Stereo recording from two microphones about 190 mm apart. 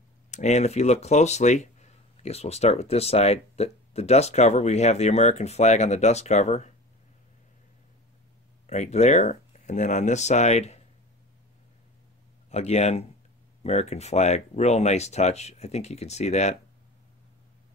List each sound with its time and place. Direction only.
0.3 s speech: 35° left (ahead or behind)
8.6 s speech: 35° left (ahead or behind)
12.4 s speech: 35° left (ahead or behind)